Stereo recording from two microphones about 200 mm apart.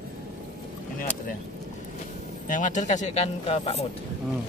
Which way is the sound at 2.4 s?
40° left (ahead or behind).